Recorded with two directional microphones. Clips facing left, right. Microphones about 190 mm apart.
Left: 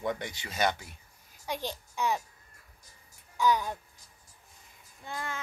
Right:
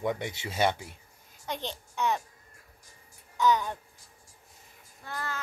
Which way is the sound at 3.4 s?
10° left (ahead or behind).